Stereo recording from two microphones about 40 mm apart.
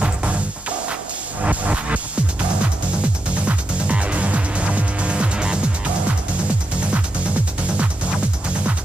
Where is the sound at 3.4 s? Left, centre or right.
Right.